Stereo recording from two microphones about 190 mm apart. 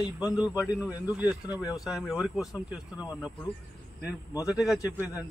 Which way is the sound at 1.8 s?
Centre (ahead or behind).